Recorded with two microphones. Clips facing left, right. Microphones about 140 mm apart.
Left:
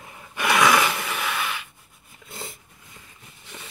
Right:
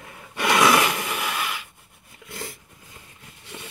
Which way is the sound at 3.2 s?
70° right (ahead or behind).